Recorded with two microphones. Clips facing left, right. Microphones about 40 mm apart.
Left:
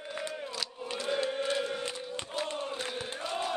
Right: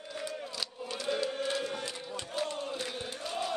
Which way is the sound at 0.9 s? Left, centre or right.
Centre.